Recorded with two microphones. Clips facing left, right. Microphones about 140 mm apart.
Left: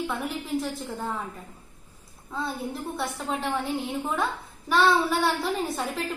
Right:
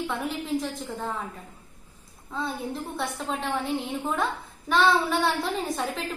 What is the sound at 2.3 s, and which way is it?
A woman's voice, 5° left (ahead or behind).